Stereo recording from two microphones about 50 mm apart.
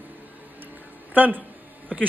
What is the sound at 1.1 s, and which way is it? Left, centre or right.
Speech, right.